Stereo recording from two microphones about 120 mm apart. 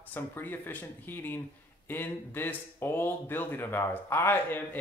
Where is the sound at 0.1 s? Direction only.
15° left (ahead or behind).